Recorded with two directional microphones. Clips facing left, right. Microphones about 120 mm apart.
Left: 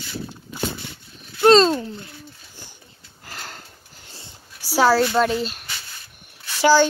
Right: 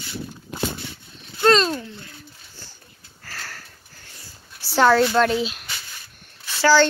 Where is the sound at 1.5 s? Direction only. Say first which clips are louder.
Left 6 dB; 30° left (ahead or behind).